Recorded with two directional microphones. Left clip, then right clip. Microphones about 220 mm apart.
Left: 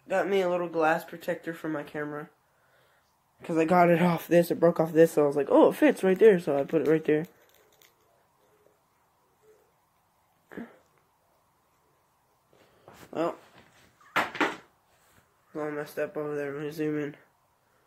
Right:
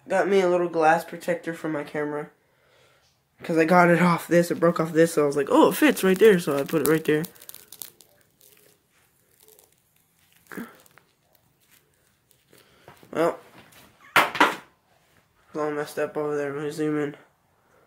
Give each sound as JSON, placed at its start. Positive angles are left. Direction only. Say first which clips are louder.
{"t": 0.1, "sound": "speech", "louder": "right 5 dB", "side_deg": 0}
{"t": 3.3, "sound": "speech", "louder": "right 4 dB", "side_deg": 0}
{"t": 5.3, "sound": "speech", "louder": "right 2 dB", "side_deg": -15}
{"t": 15.5, "sound": "speech", "louder": "right 6 dB", "side_deg": 0}